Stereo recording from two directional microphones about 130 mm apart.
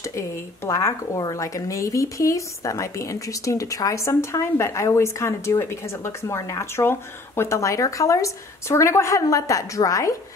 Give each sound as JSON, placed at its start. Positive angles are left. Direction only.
{"t": 0.7, "sound": "speech", "side_deg": 25}